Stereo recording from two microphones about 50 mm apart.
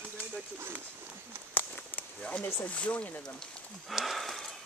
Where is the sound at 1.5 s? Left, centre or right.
Left.